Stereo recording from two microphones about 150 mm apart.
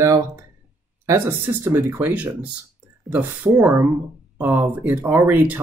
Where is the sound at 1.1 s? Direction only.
15° right (ahead or behind).